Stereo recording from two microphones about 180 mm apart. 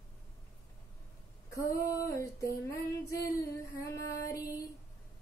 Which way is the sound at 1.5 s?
20° left (ahead or behind).